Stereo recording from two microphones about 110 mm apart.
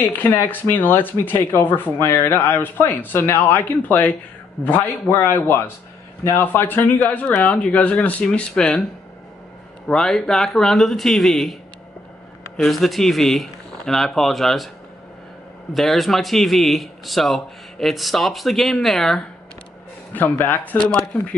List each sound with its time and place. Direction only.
0.0 s speech: 20° left (ahead or behind)
9.8 s speech: 5° left (ahead or behind)
12.5 s speech: centre (ahead or behind)
15.7 s speech: centre (ahead or behind)
20.2 s speech: 15° left (ahead or behind)